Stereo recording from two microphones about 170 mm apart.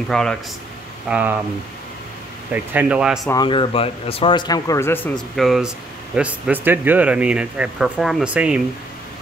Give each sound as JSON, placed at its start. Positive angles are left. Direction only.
{"t": 0.1, "sound": "speech", "side_deg": 5}
{"t": 1.0, "sound": "speech", "side_deg": -10}
{"t": 2.5, "sound": "speech", "side_deg": -10}
{"t": 3.4, "sound": "speech", "side_deg": 30}